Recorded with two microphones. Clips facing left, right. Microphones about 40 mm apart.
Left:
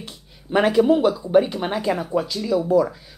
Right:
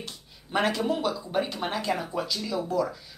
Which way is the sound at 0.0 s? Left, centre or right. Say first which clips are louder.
Left 2 dB; centre.